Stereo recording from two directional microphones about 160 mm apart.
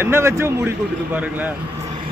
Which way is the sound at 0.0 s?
15° right (ahead or behind).